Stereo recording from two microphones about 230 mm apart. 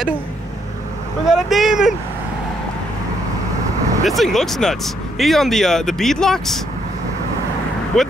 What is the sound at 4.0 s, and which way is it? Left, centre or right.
Speech, centre.